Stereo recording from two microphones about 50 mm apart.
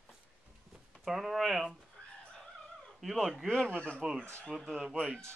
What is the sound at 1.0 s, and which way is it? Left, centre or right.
Speech, centre.